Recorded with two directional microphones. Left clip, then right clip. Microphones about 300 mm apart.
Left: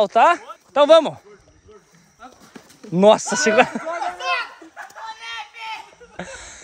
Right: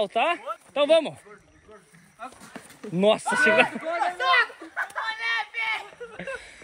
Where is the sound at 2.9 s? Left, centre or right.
Left.